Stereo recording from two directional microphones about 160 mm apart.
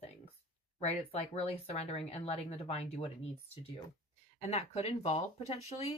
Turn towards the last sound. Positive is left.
turn(degrees=40)  # may be behind; listen again after turning